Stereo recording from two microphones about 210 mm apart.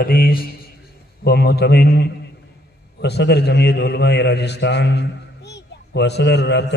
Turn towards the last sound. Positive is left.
turn(degrees=55)  # may be behind; listen again after turning